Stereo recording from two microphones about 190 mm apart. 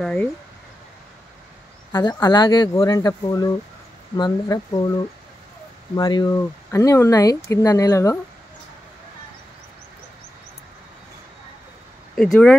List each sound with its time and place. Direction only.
0.0 s speech: 5° left (ahead or behind)
1.9 s speech: 15° left (ahead or behind)
5.9 s speech: 20° left (ahead or behind)
12.2 s speech: 5° left (ahead or behind)